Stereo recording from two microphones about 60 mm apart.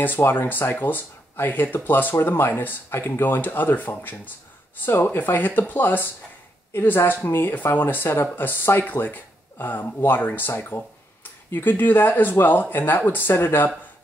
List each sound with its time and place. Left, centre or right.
0.3 s speech: left